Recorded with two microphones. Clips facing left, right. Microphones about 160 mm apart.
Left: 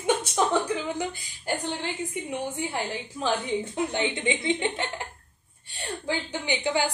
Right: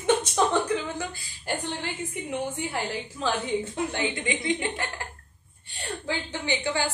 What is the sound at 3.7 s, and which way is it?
A woman's voice, 20° left (ahead or behind).